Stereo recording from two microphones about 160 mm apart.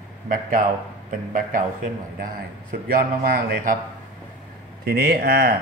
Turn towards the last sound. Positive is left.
turn(degrees=-80)